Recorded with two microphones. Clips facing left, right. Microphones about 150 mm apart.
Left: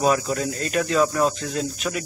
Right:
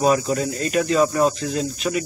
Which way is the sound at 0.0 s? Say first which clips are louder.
Right 2 dB; 5° right (ahead or behind).